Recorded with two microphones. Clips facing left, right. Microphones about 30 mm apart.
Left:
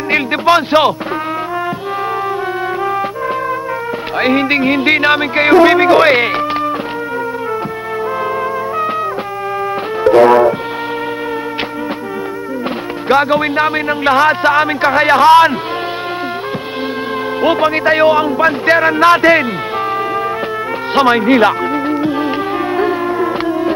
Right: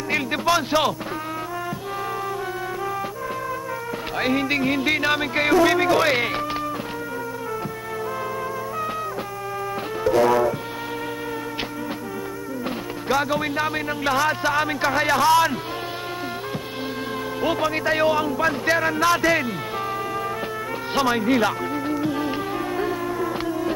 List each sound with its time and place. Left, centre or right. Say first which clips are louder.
0.1 s speech: left 9 dB; left
4.2 s speech: left 9 dB; left
10.0 s music: left 11 dB; left
13.1 s speech: left 10 dB; left
17.4 s speech: left 10 dB; left
20.9 s music: left 10 dB; left
22.8 s a sound: left 11 dB; left